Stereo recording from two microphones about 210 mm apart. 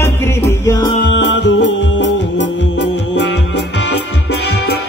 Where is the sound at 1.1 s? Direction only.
55° left (ahead or behind).